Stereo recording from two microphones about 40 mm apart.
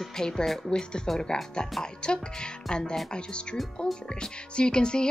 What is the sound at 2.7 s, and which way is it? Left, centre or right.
Speech, centre.